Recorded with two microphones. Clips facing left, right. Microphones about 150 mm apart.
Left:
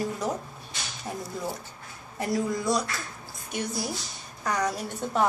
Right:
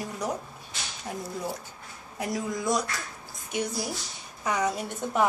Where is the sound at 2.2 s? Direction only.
20° right (ahead or behind).